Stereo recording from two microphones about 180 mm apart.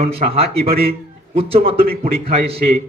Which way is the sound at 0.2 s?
50° right (ahead or behind).